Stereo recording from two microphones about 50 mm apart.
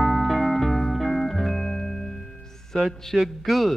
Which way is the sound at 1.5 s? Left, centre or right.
Centre.